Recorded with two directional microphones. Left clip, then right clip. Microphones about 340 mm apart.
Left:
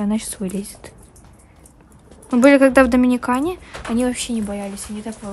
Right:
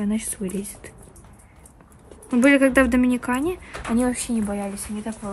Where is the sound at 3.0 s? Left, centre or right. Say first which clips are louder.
Left 4 dB; left.